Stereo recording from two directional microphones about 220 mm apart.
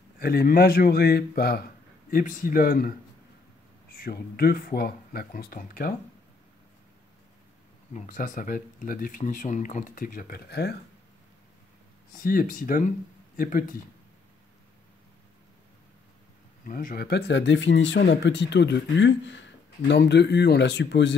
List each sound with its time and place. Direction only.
0.2 s speech: 45° left (ahead or behind)
4.0 s speech: 45° left (ahead or behind)
7.9 s speech: 35° left (ahead or behind)
12.2 s speech: 40° left (ahead or behind)
16.6 s speech: 40° left (ahead or behind)